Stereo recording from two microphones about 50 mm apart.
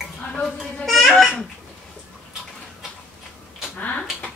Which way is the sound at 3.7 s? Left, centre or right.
Left.